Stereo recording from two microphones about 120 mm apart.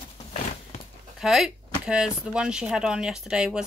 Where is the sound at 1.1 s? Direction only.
5° right (ahead or behind).